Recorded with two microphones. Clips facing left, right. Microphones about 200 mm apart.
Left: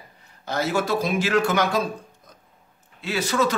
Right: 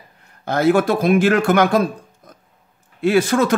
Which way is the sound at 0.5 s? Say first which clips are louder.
Right 8 dB; 55° right (ahead or behind).